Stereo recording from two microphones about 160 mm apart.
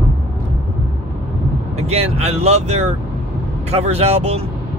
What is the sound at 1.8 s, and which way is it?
Speech, 40° right (ahead or behind).